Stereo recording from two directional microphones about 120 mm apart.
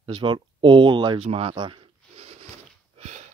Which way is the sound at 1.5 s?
45° right (ahead or behind).